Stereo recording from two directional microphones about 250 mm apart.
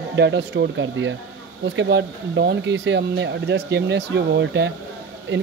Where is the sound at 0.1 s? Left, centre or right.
Right.